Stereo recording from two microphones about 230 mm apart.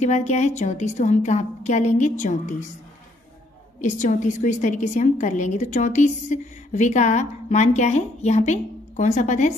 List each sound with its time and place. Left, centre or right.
0.0 s a woman's voice: left
3.8 s a woman's voice: left